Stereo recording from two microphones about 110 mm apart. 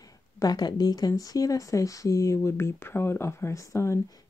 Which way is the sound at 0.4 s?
40° left (ahead or behind).